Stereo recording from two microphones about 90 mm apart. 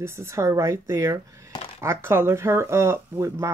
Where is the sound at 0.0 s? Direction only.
30° right (ahead or behind).